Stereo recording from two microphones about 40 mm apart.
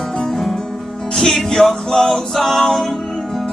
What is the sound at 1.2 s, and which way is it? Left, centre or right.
Music, centre.